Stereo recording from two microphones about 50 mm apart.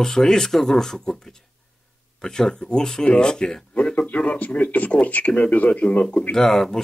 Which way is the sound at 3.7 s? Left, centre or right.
Left.